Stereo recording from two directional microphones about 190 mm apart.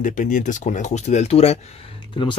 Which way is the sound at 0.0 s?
40° left (ahead or behind).